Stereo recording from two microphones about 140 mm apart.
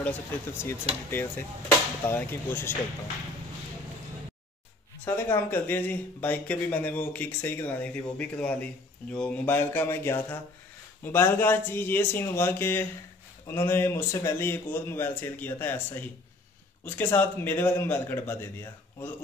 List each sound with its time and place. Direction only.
0.0 s speech: 15° left (ahead or behind)
2.0 s speech: 15° left (ahead or behind)
5.0 s speech: 15° left (ahead or behind)